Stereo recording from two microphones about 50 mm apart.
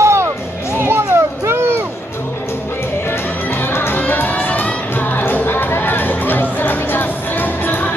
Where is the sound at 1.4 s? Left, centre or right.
Right.